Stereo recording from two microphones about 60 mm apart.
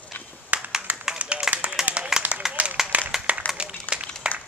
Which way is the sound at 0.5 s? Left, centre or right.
Right.